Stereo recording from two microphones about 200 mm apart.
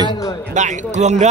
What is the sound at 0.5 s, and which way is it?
Speech, 35° right (ahead or behind).